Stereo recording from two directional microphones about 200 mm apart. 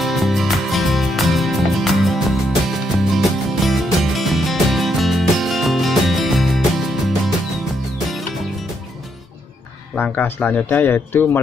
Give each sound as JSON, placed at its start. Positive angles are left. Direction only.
{"t": 0.0, "sound": "music", "side_deg": 0}
{"t": 9.9, "sound": "speech", "side_deg": 5}